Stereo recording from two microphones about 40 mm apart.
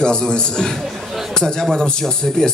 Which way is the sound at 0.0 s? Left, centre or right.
Left.